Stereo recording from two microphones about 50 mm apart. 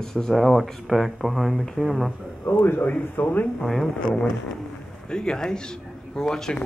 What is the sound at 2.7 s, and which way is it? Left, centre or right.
Speech, left.